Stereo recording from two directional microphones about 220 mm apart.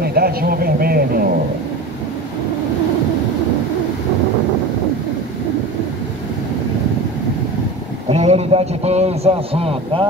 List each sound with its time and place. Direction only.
0.0 s speech: 45° right (ahead or behind)
8.1 s a man's voice: 30° right (ahead or behind)